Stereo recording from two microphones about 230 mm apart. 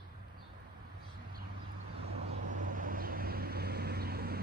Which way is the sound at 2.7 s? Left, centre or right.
Right.